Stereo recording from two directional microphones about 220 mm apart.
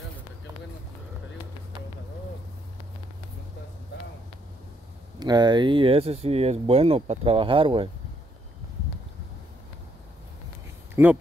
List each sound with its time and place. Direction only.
5.2 s speech: 20° right (ahead or behind)
11.0 s speech: 10° right (ahead or behind)